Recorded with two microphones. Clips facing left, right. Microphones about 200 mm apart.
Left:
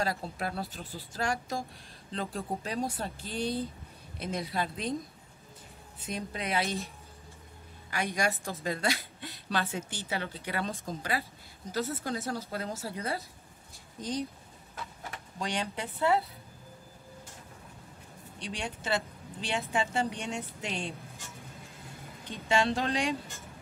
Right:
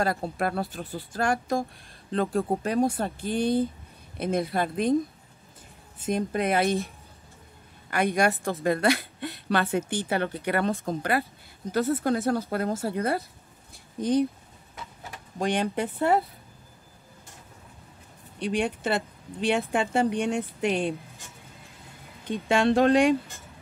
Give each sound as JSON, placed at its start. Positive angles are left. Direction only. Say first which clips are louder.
{"t": 0.0, "sound": "speech", "louder": "right 6 dB", "side_deg": -55}
{"t": 5.9, "sound": "speech", "louder": "right 10 dB", "side_deg": -50}
{"t": 7.9, "sound": "a woman's voice", "louder": "right 7 dB", "side_deg": -55}
{"t": 15.3, "sound": "speech", "louder": "right 9 dB", "side_deg": -55}
{"t": 18.4, "sound": "a woman's voice", "louder": "right 11 dB", "side_deg": -55}
{"t": 22.3, "sound": "a woman's voice", "louder": "right 6 dB", "side_deg": -55}